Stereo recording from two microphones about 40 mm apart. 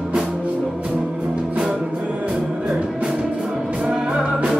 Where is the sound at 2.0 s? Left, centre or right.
Right; by 4.2 s centre.